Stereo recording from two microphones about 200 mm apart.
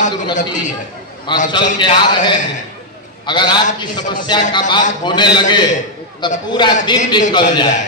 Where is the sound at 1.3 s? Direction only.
20° left (ahead or behind).